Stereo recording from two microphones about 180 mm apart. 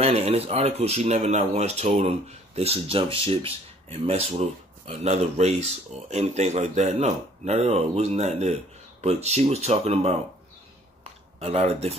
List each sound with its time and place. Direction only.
0.0 s speech: 35° right (ahead or behind)
11.3 s speech: 35° right (ahead or behind)